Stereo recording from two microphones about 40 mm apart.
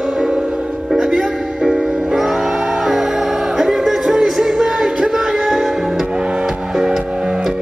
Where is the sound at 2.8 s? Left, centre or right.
Centre.